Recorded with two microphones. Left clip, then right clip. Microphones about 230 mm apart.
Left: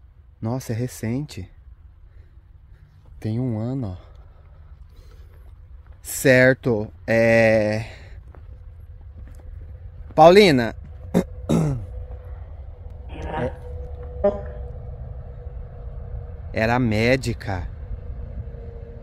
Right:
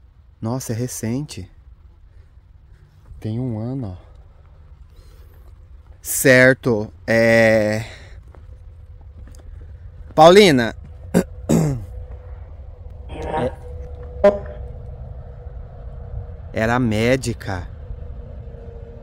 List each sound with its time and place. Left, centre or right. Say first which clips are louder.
0.4 s speech: right 2 dB; centre
3.2 s speech: even; centre
6.0 s speech: right 3 dB; centre
10.0 s speech: right 2 dB; centre
11.1 s burping: right 3 dB; right
13.0 s a sound: right 5 dB; centre
16.5 s speech: right 1 dB; centre
18.5 s vehicle: right 2 dB; centre